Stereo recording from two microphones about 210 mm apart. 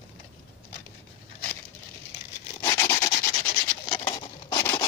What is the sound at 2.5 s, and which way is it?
Rub, 15° left (ahead or behind).